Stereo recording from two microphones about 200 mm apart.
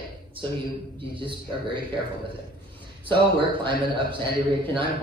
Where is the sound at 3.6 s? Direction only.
25° right (ahead or behind).